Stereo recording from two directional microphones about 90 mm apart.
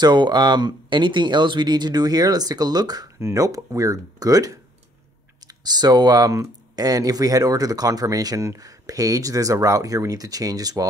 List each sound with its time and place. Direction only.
0.0 s speech: 55° right (ahead or behind)
3.2 s speech: 35° right (ahead or behind)